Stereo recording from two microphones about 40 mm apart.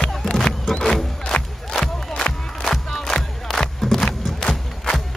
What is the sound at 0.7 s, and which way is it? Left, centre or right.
Music, centre.